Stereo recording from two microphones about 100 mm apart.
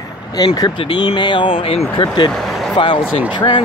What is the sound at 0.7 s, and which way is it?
Speech, 50° left (ahead or behind).